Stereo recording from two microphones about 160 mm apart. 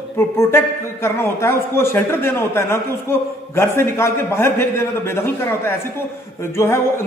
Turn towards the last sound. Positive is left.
turn(degrees=15)  # may be behind; listen again after turning